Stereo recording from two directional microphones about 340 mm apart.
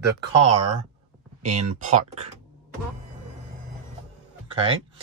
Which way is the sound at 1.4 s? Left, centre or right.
Centre.